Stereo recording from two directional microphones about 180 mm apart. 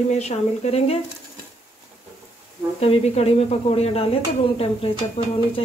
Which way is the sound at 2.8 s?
35° left (ahead or behind).